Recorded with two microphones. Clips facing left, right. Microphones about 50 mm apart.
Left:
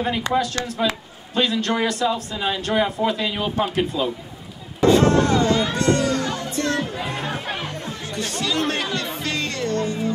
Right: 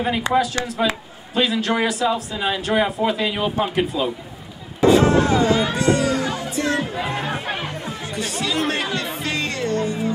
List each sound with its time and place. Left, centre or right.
0.3 s speech: right
1.3 s a man's voice: centre
4.8 s music: centre